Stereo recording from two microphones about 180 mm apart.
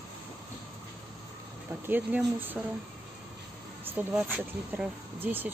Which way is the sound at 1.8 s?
10° right (ahead or behind).